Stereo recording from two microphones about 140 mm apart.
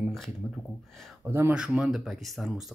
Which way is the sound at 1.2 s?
20° right (ahead or behind).